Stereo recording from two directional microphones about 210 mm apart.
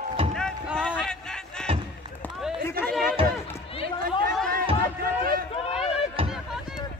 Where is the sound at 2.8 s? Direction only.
Centre (ahead or behind).